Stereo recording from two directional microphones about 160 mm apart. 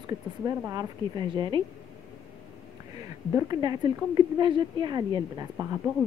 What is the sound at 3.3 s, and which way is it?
A woman's voice, 20° right (ahead or behind).